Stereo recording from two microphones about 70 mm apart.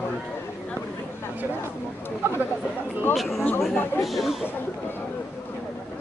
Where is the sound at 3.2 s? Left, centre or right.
Centre.